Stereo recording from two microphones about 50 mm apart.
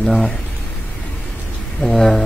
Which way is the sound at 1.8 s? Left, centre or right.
Centre.